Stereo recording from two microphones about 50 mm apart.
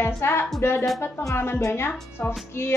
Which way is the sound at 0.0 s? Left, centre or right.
Left.